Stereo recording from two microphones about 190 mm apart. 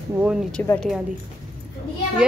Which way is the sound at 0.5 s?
10° left (ahead or behind).